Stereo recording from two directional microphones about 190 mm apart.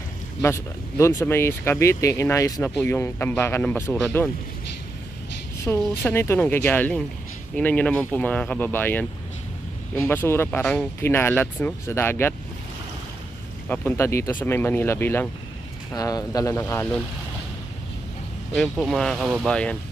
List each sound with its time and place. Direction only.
0.4 s speech: 15° left (ahead or behind)
5.6 s speech: 10° left (ahead or behind)
13.7 s speech: 10° left (ahead or behind)
18.6 s speech: centre (ahead or behind)